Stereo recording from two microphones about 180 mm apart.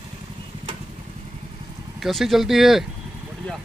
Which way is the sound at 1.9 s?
Centre (ahead or behind).